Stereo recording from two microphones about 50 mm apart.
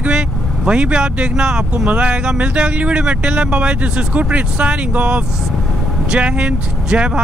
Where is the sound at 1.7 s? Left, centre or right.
Right.